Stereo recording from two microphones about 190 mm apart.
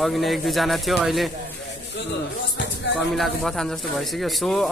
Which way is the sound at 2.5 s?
65° left (ahead or behind).